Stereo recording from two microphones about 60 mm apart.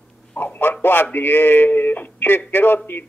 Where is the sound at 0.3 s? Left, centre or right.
Left.